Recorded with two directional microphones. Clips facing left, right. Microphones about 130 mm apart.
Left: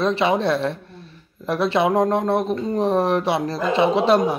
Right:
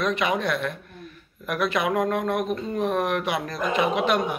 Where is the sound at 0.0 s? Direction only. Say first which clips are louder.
Left 5 dB; 30° left (ahead or behind).